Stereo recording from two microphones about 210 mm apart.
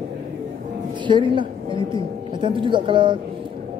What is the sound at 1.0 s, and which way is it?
A woman's voice, 20° right (ahead or behind).